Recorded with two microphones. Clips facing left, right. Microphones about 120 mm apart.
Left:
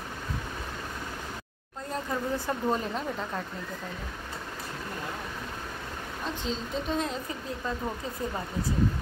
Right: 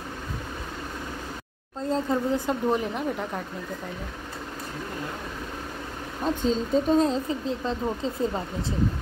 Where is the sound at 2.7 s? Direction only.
15° right (ahead or behind).